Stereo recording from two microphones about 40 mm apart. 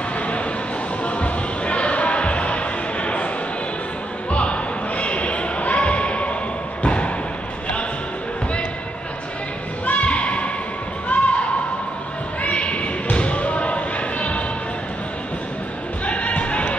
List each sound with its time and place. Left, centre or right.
1.0 s basketball bounce: left
4.3 s basketball bounce: left
9.8 s a sound: left
11.1 s basketball bounce: left
16.1 s music: left